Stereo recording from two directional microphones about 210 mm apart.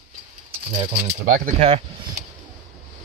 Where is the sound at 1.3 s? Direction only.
35° right (ahead or behind).